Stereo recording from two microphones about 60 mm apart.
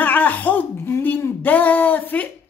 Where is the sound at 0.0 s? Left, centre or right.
Left.